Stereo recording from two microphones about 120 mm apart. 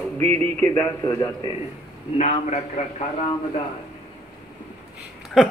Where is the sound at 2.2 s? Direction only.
70° left (ahead or behind).